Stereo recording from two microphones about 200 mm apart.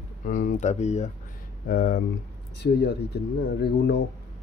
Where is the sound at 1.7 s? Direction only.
50° left (ahead or behind).